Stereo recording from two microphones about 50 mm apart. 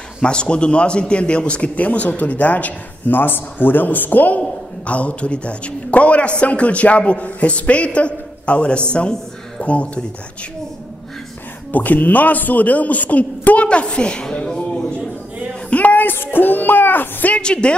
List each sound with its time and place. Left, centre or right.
0.2 s a man's voice: centre
11.7 s a man's voice: left
13.7 s a woman's voice: left
15.7 s a sound: left
17.4 s a man's voice: centre